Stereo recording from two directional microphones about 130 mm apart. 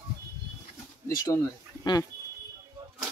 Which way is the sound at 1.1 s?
25° left (ahead or behind).